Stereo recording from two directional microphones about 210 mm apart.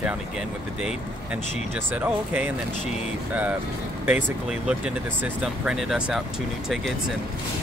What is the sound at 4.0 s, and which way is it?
Speech, 5° right (ahead or behind).